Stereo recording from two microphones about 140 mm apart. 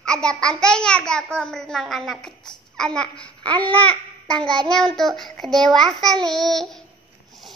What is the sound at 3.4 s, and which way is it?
Babbling, 35° right (ahead or behind).